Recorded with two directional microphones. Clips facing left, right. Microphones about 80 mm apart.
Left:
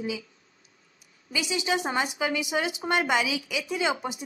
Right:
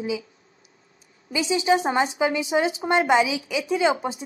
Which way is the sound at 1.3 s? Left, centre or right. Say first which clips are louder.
Right 7 dB; right.